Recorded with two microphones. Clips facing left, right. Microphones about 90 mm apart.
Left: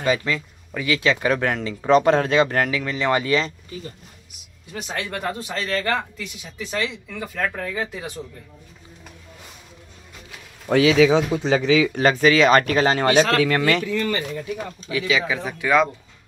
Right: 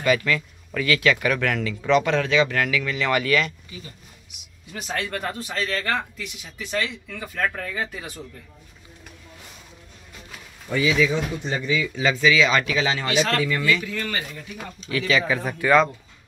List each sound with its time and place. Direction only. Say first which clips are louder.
0.0 s speech: right 1 dB; 25° left (ahead or behind)
4.7 s speech: even; 20° left (ahead or behind)
5.5 s speech: left 2 dB; 30° left (ahead or behind)
7.5 s speech: left 2 dB; 25° left (ahead or behind)
10.7 s speech: left 6 dB; 75° left (ahead or behind)
12.0 s speech: even; 50° left (ahead or behind)
13.3 s speech: left 4 dB; 80° left
14.9 s speech: right 1 dB; 10° left (ahead or behind)